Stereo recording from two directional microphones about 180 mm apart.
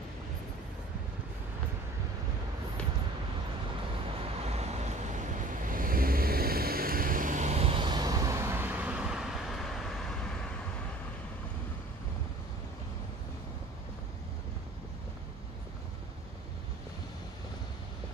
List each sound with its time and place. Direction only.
4.4 s vehicle: 35° right (ahead or behind)
5.7 s vehicle: 50° right (ahead or behind); by 10.1 s centre (ahead or behind)